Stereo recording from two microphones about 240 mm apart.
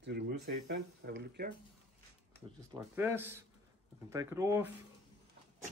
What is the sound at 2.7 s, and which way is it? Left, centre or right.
Speech, centre.